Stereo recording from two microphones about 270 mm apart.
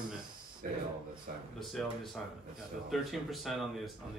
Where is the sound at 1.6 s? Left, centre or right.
Centre.